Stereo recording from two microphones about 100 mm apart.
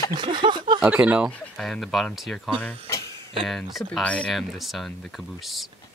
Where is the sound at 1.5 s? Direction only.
5° left (ahead or behind).